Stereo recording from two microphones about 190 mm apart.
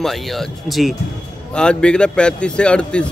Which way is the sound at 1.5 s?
5° left (ahead or behind).